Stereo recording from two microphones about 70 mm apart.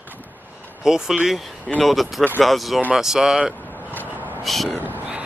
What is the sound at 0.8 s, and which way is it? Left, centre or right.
Speech, centre.